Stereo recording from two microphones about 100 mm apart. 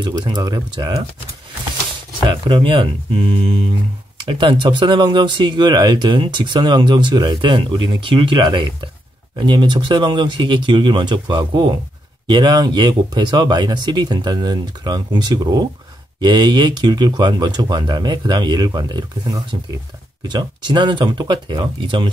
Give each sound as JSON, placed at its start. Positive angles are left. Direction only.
{"t": 0.0, "sound": "speech", "side_deg": -45}
{"t": 2.2, "sound": "speech", "side_deg": -55}
{"t": 4.2, "sound": "speech", "side_deg": -50}